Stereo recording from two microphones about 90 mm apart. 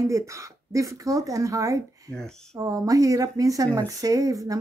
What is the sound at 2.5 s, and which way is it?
Speech, 40° right (ahead or behind).